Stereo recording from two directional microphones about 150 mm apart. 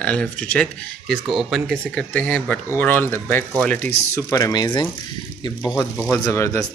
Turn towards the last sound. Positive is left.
turn(degrees=20)  # may be behind; listen again after turning